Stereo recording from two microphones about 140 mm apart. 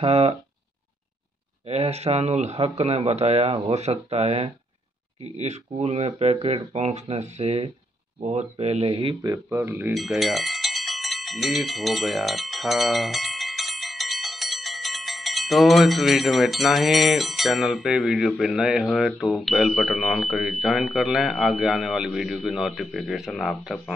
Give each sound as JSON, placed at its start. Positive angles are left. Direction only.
{"t": 0.0, "sound": "speech", "side_deg": -45}
{"t": 1.7, "sound": "speech", "side_deg": -50}
{"t": 9.5, "sound": "speech", "side_deg": -20}
{"t": 9.9, "sound": "speech", "side_deg": 0}